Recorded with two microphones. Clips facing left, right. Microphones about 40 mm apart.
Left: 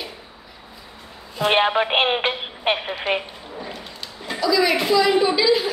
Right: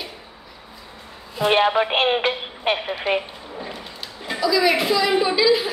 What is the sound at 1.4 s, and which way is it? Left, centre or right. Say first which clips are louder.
Speech: right 1 dB; centre.